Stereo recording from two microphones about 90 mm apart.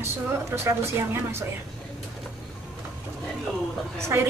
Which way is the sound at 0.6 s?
30° right (ahead or behind).